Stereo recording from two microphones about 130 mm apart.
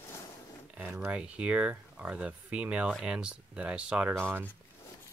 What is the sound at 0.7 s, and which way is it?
Speech, 10° right (ahead or behind).